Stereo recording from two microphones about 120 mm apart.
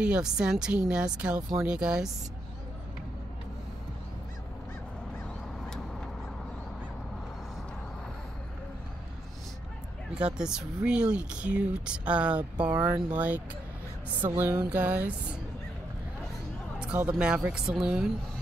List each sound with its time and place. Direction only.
0.0 s speech: 5° right (ahead or behind)
10.1 s speech: 5° right (ahead or behind)
16.7 s a sound: 10° right (ahead or behind)
17.2 s speech: 10° right (ahead or behind)